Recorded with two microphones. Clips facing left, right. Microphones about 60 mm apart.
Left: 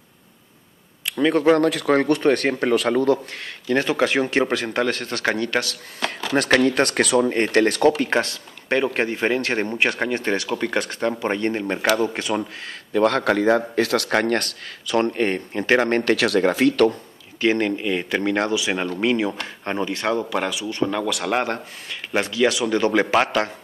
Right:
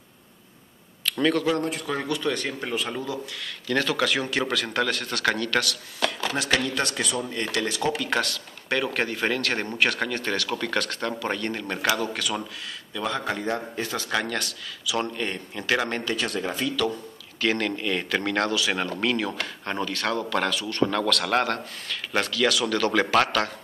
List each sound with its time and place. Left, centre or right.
1.0 s a sound: centre
1.6 s a man's voice: left
1.9 s speech: left
3.3 s speech: left
3.6 s speech: left
7.0 s a man's voice: left
7.3 s speech: left
8.1 s speech: left
12.9 s a man's voice: left
14.1 s speech: left
16.0 s a man's voice: left
17.4 s speech: left